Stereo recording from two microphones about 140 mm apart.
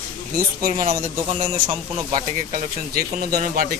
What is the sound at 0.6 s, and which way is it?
Speech, 90° right.